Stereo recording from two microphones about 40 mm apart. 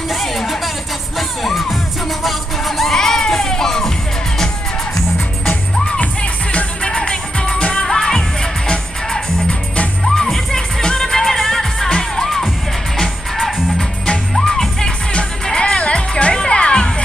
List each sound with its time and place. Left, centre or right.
0.1 s music: centre
6.5 s music: left
7.8 s music: centre
11.9 s music: centre
13.7 s music: centre